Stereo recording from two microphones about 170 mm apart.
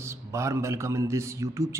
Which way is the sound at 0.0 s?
15° right (ahead or behind).